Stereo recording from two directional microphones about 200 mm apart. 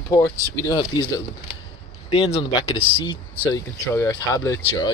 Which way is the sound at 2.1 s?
30° left (ahead or behind).